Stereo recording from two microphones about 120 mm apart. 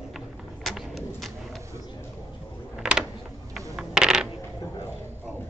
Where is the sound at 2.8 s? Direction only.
5° right (ahead or behind).